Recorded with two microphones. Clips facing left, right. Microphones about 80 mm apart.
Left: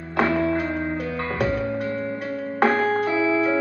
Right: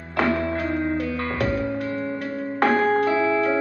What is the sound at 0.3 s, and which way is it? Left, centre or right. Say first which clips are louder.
Music: left 1 dB; centre.